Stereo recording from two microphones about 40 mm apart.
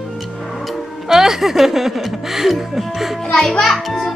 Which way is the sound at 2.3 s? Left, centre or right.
Centre.